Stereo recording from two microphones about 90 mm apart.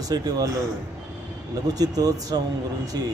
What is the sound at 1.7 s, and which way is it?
Speech, 45° right (ahead or behind).